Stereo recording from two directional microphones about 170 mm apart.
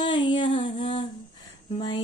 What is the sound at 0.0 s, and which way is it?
Music, 30° left (ahead or behind).